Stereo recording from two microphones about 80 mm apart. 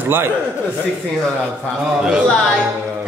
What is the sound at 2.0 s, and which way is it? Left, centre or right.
Speech, centre.